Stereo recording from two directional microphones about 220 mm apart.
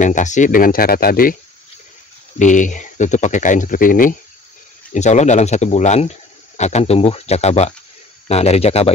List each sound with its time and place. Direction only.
0.0 s speech: 35° left (ahead or behind)
2.3 s speech: 35° left (ahead or behind)